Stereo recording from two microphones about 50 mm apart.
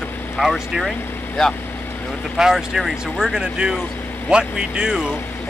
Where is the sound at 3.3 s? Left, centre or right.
Centre.